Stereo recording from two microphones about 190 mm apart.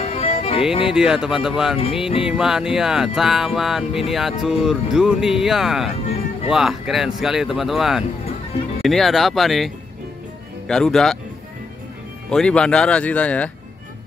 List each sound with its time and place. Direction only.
0.0 s music: 35° left (ahead or behind)
0.8 s speech: 5° right (ahead or behind)
6.0 s music: 30° left (ahead or behind)
6.5 s speech: centre (ahead or behind)
10.7 s speech: 5° left (ahead or behind)
12.3 s speech: 5° left (ahead or behind)